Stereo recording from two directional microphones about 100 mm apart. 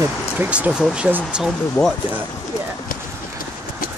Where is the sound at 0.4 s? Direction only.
10° right (ahead or behind).